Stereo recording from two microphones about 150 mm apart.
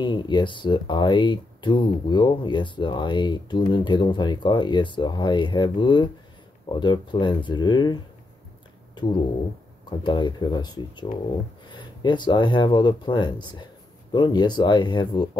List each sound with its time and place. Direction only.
0.0 s speech: 30° left (ahead or behind)
9.8 s speech: 30° left (ahead or behind)